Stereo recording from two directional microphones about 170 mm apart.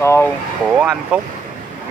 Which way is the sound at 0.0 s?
15° left (ahead or behind).